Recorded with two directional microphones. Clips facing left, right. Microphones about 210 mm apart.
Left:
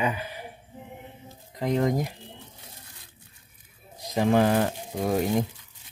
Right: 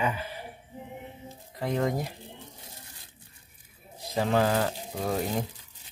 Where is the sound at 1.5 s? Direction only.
20° left (ahead or behind).